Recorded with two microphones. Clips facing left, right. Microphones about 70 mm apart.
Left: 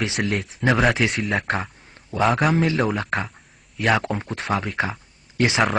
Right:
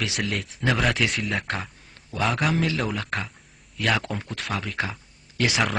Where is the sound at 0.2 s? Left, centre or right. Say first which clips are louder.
Left 4 dB; centre.